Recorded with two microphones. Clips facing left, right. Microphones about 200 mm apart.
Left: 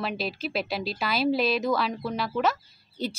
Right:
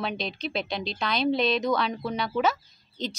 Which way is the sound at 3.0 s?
10° left (ahead or behind).